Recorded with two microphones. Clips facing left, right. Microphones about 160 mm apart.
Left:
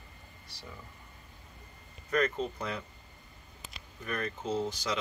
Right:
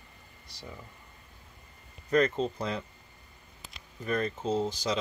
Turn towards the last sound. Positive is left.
turn(degrees=-30)  # may be behind; listen again after turning